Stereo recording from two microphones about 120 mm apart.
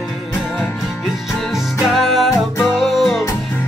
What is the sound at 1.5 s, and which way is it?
Music, centre (ahead or behind).